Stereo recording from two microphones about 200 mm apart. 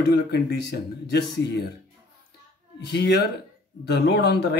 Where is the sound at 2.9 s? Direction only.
55° left (ahead or behind).